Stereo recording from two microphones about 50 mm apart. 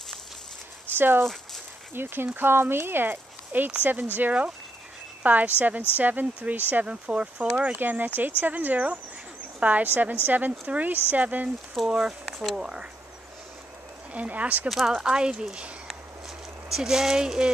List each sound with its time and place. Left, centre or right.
0.9 s speech: right
1.2 s speech: centre
2.0 s speech: right
5.2 s speech: right
7.7 s a woman's voice: right
11.8 s speech: centre
12.5 s speech: centre
14.1 s speech: right
14.7 s speech: centre
15.0 s speech: centre
16.6 s speech: centre